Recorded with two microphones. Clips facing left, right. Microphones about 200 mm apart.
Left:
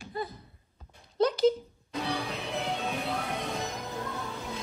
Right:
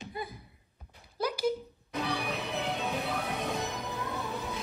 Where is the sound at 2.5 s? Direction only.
15° right (ahead or behind).